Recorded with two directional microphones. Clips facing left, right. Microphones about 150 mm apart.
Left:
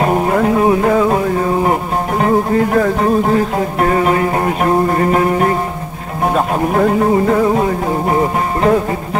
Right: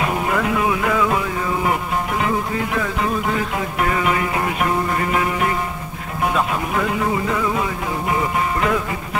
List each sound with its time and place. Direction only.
0.0 s music: 40° left (ahead or behind)